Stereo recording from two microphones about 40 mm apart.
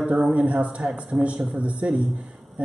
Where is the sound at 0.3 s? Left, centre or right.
Right.